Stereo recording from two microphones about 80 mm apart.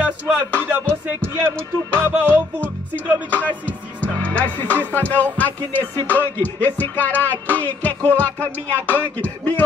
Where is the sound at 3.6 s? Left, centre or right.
Centre.